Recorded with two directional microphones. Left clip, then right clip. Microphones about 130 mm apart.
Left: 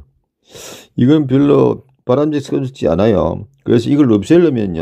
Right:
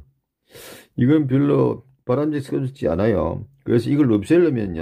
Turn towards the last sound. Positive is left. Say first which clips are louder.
# left 6 dB
turn(degrees=30)  # may be behind; listen again after turning